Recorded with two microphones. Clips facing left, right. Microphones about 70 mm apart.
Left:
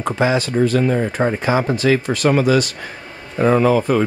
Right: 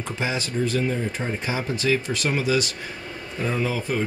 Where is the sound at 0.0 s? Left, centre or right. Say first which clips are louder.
Left 10 dB; left.